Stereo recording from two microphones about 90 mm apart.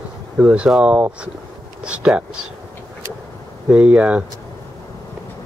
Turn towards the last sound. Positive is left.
turn(degrees=-15)  # may be behind; listen again after turning